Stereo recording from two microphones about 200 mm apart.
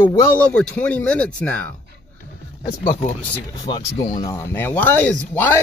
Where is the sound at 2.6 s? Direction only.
25° left (ahead or behind).